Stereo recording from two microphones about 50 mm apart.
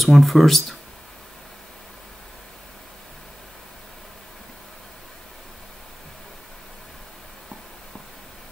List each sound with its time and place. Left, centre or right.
0.0 s speech: centre